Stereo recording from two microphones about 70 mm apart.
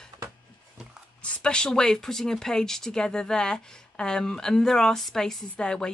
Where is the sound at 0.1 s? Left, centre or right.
Right.